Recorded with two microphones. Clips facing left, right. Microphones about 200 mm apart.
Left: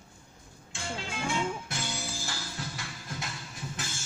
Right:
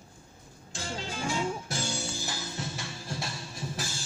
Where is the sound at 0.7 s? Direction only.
35° right (ahead or behind).